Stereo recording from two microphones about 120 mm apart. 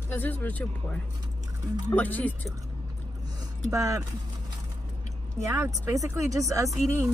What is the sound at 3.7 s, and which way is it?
Speech, 25° right (ahead or behind).